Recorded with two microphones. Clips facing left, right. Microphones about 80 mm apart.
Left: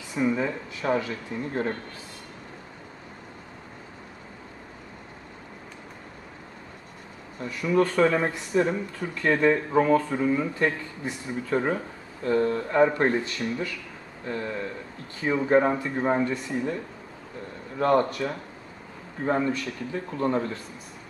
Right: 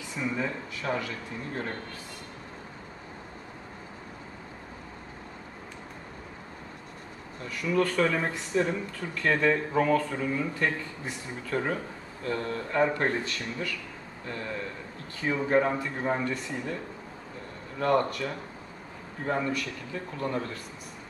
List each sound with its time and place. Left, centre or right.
0.1 s speech: left
7.4 s speech: left
17.7 s speech: left